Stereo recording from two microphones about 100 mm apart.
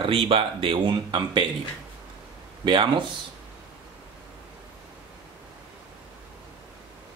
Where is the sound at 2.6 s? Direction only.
55° right (ahead or behind).